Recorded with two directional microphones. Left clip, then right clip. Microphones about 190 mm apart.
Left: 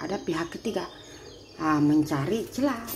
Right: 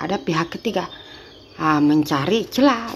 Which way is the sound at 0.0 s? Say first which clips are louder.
Right 8 dB; 25° right (ahead or behind).